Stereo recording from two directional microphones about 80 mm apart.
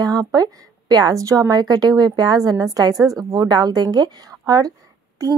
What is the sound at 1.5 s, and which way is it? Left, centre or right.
A woman's voice, right.